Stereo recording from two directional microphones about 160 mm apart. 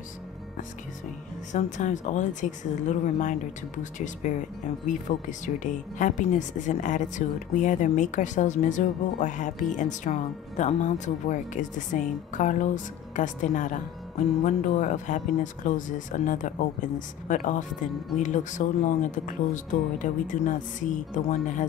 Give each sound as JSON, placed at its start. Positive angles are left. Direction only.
{"t": 1.5, "sound": "speech", "side_deg": 50}